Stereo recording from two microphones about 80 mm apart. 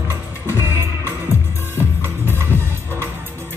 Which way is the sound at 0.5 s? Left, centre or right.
Right.